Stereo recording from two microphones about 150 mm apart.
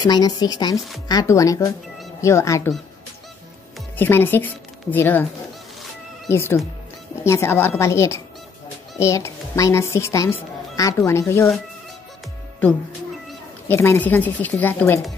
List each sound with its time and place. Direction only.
0.0 s speech: 25° left (ahead or behind)
3.9 s a woman's voice: 15° left (ahead or behind)
6.2 s a woman's voice: 15° left (ahead or behind)
13.7 s a woman's voice: 15° left (ahead or behind)